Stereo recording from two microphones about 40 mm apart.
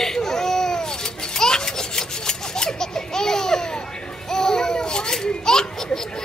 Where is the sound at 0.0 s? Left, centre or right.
Centre.